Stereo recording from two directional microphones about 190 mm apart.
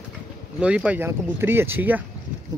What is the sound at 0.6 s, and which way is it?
Speech, 5° right (ahead or behind).